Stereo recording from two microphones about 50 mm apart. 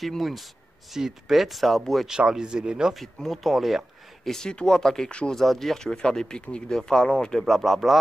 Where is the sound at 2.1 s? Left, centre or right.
Centre.